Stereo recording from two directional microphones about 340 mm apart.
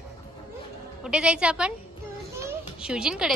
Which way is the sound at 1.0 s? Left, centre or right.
Centre.